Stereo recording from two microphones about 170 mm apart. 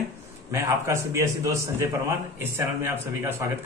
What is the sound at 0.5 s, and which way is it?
A man's voice, 15° right (ahead or behind).